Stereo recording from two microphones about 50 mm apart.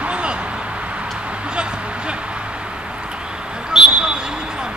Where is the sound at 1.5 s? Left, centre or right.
Centre.